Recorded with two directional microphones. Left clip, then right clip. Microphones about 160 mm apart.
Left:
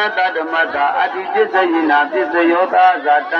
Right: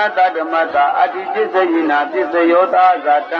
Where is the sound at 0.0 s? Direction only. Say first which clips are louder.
Right 2 dB; 35° right (ahead or behind).